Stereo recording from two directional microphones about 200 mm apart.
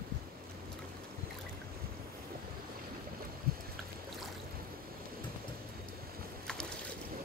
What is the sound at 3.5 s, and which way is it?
Boat, 50° right (ahead or behind).